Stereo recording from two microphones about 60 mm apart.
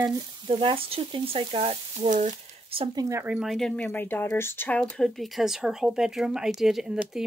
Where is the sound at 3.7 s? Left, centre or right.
Left.